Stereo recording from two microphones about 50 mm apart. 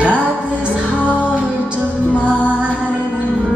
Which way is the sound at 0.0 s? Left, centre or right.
Right.